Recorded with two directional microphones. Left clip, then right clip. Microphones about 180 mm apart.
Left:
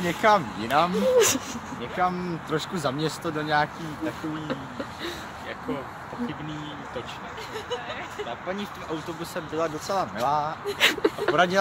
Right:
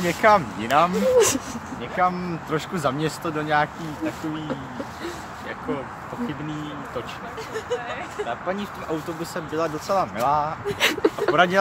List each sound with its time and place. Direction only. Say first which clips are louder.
0.0 s speech: right 3 dB; 15° right (ahead or behind)
0.7 s speech: right 3 dB; centre (ahead or behind)
9.6 s speech: right 2 dB; 45° right (ahead or behind)
10.1 s speech: right 3 dB; 20° right (ahead or behind)
10.8 s speech: right 1 dB; 10° right (ahead or behind)